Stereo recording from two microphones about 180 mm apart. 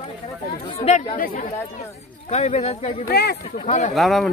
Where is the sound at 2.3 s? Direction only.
35° left (ahead or behind).